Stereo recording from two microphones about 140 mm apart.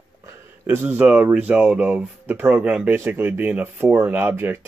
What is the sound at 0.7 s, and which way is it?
Speech, 15° right (ahead or behind).